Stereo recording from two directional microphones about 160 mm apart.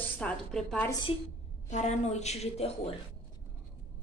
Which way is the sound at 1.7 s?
45° left (ahead or behind).